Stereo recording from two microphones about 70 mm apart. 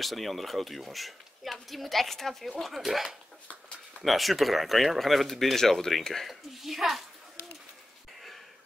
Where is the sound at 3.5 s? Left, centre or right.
Centre.